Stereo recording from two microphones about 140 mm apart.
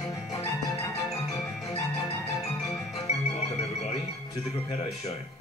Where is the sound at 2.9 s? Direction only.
50° left (ahead or behind).